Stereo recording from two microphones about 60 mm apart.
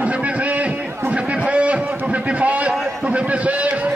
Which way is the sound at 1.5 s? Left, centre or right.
Right.